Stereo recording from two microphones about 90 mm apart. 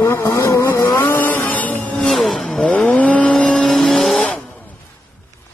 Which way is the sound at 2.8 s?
15° left (ahead or behind).